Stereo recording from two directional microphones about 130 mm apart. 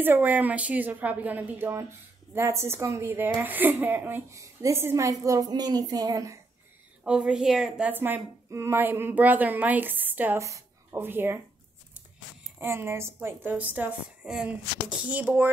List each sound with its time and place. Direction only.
0.0 s a woman's voice: 15° right (ahead or behind)
7.1 s a woman's voice: 5° right (ahead or behind)
12.5 s a woman's voice: 20° right (ahead or behind)